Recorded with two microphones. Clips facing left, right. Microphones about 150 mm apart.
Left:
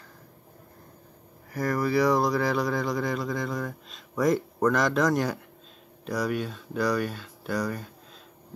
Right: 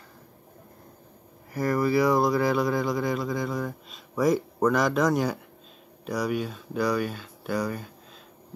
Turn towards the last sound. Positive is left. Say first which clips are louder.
# right 1 dB
turn(degrees=-5)  # may be behind; listen again after turning